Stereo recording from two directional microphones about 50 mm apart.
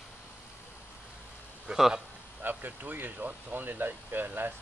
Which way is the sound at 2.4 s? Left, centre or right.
Right.